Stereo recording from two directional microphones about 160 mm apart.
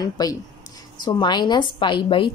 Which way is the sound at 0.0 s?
25° left (ahead or behind).